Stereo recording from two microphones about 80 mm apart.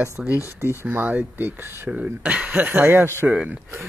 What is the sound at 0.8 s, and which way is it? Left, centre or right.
Speech, right.